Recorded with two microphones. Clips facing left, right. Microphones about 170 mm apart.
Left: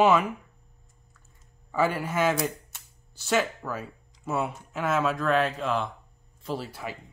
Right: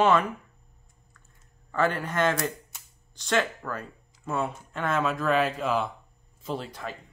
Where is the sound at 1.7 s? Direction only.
10° left (ahead or behind).